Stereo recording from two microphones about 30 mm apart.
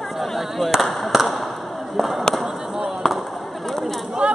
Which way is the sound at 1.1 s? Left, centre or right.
Centre.